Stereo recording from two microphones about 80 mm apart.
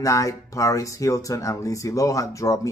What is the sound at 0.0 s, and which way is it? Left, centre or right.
Speech, left.